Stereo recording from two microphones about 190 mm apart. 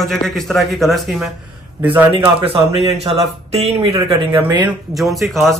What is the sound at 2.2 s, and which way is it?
Speech, 30° right (ahead or behind).